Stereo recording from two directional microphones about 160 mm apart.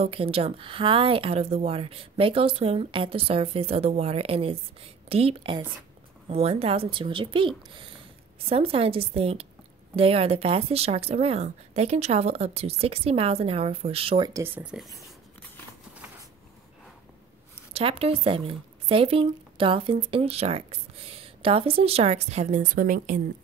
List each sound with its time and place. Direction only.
0.0 s speech: 35° right (ahead or behind)
14.3 s speech: 15° right (ahead or behind)
17.7 s speech: 35° right (ahead or behind); by 23.2 s 55° right (ahead or behind)